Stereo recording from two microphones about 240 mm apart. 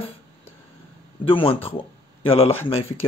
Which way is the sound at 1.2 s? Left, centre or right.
Left.